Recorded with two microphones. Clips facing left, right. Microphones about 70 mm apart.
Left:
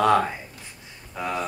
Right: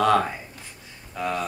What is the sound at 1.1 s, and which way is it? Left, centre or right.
Speech, centre.